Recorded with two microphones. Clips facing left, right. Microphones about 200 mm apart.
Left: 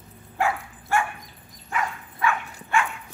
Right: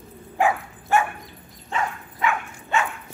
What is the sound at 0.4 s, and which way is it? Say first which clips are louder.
Dog: right 4 dB; 20° right (ahead or behind).